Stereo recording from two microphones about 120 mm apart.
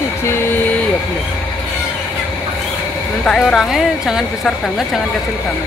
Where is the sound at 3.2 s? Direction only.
5° left (ahead or behind).